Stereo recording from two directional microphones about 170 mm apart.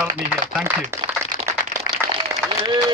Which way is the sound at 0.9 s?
15° right (ahead or behind).